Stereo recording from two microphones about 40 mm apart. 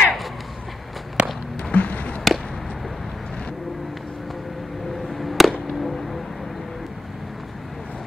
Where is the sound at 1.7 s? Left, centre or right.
Left.